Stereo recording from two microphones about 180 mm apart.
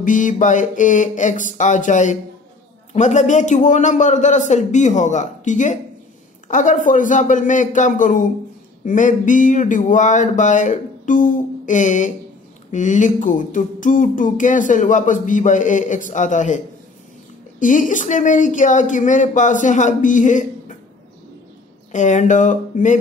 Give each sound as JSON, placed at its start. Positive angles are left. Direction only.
{"t": 0.0, "sound": "music", "side_deg": 45}
{"t": 2.9, "sound": "a man's voice", "side_deg": 40}
{"t": 6.5, "sound": "music", "side_deg": 45}
{"t": 21.9, "sound": "music", "side_deg": 40}